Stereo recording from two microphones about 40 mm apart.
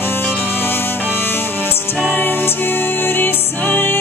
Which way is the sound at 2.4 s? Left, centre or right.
Left.